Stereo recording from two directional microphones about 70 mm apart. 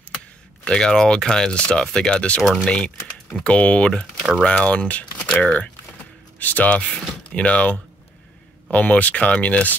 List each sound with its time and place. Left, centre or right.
0.7 s speech: centre